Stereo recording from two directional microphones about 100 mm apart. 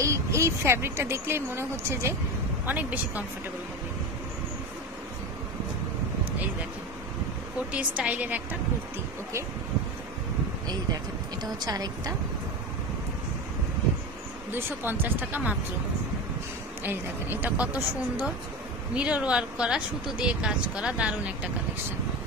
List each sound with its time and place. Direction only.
0.0 s speech: 30° right (ahead or behind)
2.6 s speech: 15° right (ahead or behind)
7.7 s speech: 15° right (ahead or behind)
11.6 s a woman's voice: 40° right (ahead or behind)
14.5 s a woman's voice: 20° right (ahead or behind)
16.8 s a woman's voice: 20° right (ahead or behind)